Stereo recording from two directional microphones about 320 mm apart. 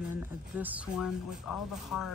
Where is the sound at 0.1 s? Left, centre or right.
Centre.